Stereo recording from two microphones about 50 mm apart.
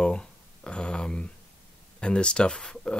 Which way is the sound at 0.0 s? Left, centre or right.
Centre.